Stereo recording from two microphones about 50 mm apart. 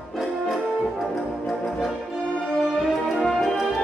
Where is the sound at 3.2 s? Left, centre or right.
Centre.